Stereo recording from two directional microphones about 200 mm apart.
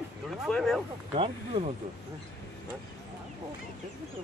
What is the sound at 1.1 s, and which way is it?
Speech, 30° right (ahead or behind).